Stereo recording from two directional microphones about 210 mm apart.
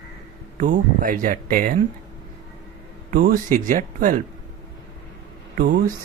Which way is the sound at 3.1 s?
40° right (ahead or behind).